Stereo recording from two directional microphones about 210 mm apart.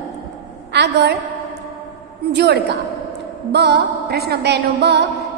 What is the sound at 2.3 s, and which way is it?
Music, 50° right (ahead or behind).